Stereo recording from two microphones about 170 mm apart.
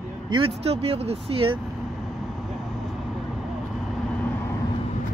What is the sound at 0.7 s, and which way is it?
Speech, 35° right (ahead or behind).